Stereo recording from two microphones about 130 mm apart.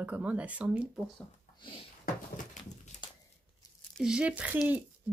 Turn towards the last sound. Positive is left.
turn(degrees=-15)  # may be behind; listen again after turning